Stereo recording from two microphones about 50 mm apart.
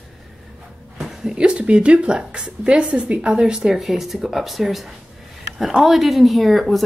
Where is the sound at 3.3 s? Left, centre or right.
Centre.